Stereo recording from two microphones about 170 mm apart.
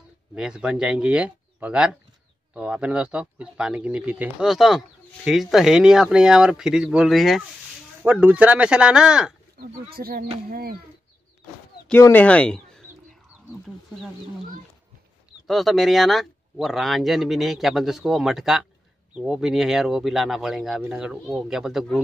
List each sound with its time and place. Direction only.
0.3 s speech: 5° right (ahead or behind)
9.6 s speech: 60° right (ahead or behind)
11.9 s speech: 10° left (ahead or behind)
15.4 s speech: centre (ahead or behind)